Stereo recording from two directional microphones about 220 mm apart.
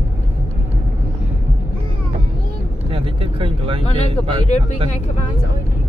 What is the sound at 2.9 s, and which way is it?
Speech, 25° right (ahead or behind).